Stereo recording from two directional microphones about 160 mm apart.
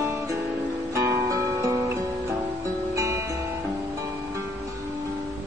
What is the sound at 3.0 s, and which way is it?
Music, 20° right (ahead or behind).